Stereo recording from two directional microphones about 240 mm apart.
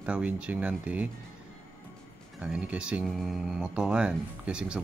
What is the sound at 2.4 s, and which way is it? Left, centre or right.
Speech, centre.